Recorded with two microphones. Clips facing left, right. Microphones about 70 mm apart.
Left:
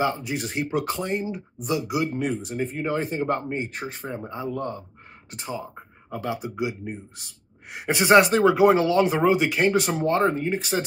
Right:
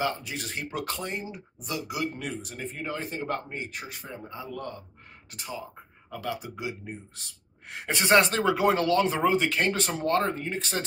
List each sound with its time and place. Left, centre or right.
0.0 s speech: left